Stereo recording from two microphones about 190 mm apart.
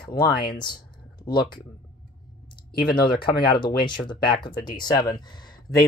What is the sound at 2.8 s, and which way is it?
Speech, 25° left (ahead or behind).